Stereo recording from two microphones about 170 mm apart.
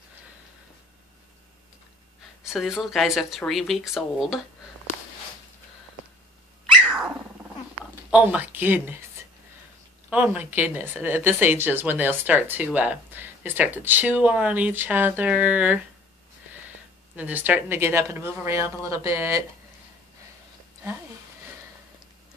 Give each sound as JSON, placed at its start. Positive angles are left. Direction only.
{"t": 2.4, "sound": "speech", "side_deg": 0}
{"t": 6.6, "sound": "cat", "side_deg": -5}
{"t": 8.1, "sound": "speech", "side_deg": -5}
{"t": 10.0, "sound": "speech", "side_deg": -10}
{"t": 17.1, "sound": "speech", "side_deg": -10}